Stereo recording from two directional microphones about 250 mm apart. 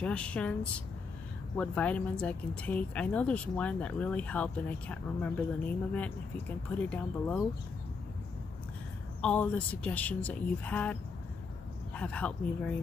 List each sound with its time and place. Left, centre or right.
0.0 s speech: centre
9.2 s speech: centre